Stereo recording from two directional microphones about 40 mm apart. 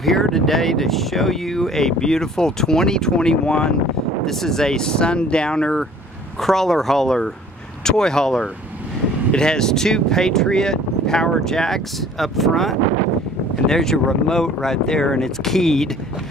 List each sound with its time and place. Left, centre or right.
0.0 s speech: centre
4.3 s speech: centre
6.4 s speech: centre